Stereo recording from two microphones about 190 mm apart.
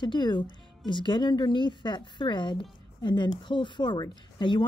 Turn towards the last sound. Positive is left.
turn(degrees=25)  # may be behind; listen again after turning